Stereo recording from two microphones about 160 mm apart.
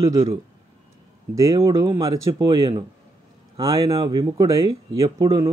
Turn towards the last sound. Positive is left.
turn(degrees=-20)  # may be behind; listen again after turning